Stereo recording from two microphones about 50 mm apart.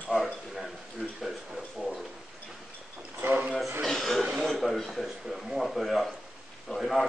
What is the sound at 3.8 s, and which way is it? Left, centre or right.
A man's voice, centre.